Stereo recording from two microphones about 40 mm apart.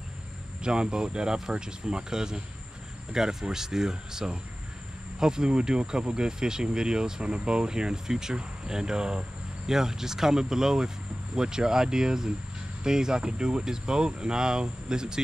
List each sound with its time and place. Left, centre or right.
0.6 s speech: right